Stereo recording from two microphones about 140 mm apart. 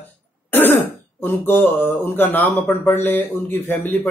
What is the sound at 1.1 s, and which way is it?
Speech, 10° left (ahead or behind).